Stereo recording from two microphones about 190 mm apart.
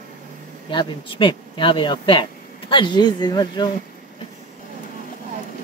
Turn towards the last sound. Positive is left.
turn(degrees=20)  # may be behind; listen again after turning